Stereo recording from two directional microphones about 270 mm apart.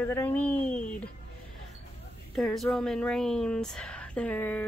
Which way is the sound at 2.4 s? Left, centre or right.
Centre.